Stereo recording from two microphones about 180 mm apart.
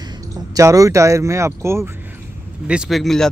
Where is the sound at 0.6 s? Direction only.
20° right (ahead or behind).